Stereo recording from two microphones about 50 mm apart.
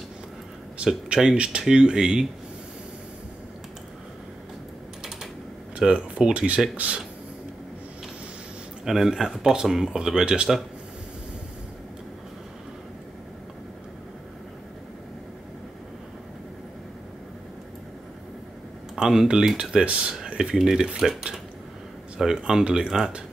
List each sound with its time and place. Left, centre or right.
1.0 s speech: centre
5.8 s speech: centre
8.8 s speech: centre
18.9 s speech: centre
20.3 s speech: centre
22.2 s speech: centre